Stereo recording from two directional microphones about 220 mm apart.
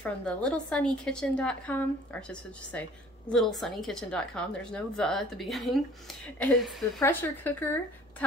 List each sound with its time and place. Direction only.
0.0 s a woman's voice: 5° left (ahead or behind)